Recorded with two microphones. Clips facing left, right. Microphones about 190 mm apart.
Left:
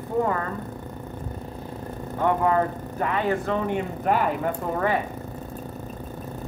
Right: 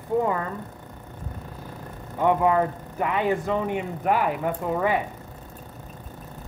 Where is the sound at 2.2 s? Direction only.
15° right (ahead or behind).